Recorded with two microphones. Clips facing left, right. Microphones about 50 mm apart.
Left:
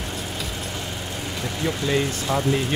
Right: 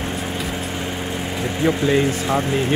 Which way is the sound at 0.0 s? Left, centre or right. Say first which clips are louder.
Right 5 dB; right.